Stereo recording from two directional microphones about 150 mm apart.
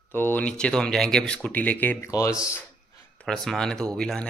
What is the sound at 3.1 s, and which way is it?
Speech, 5° left (ahead or behind).